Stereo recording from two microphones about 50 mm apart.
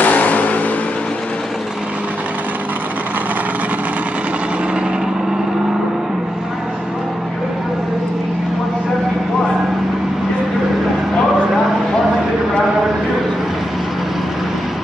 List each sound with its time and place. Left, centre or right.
0.0 s vehicle: left